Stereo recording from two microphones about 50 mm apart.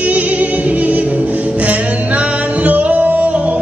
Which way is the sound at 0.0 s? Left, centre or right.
Right.